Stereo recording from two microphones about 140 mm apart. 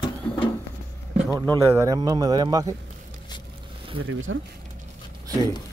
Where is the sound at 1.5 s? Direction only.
25° right (ahead or behind).